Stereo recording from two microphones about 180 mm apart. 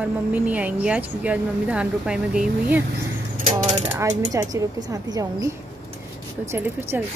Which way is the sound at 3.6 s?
40° right (ahead or behind).